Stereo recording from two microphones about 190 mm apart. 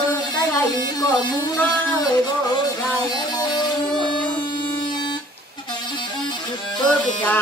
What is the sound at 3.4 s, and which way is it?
Music, 20° left (ahead or behind).